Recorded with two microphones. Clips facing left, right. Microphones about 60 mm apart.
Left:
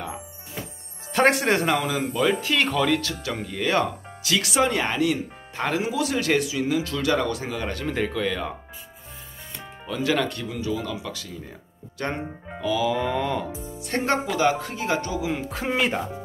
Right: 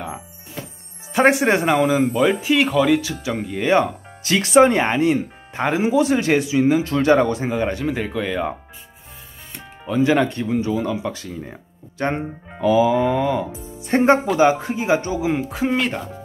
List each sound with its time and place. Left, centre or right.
1.1 s speech: centre
4.2 s speech: right
7.8 s speech: centre
9.8 s speech: right
13.8 s speech: right
15.4 s speech: centre